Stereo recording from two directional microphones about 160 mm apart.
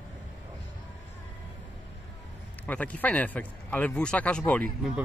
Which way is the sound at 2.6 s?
10° left (ahead or behind).